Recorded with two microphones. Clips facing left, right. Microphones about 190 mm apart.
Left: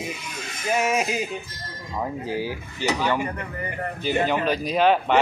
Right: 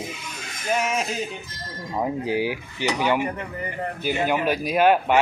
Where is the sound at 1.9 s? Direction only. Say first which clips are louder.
Right 3 dB; 15° right (ahead or behind).